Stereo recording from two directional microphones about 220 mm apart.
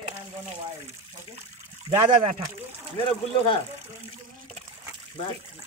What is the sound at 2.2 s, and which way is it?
Speech, 30° right (ahead or behind).